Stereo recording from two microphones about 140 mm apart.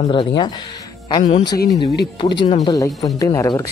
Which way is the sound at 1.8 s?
35° left (ahead or behind).